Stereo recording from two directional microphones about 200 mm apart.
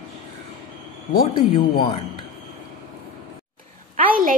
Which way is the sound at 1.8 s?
25° left (ahead or behind).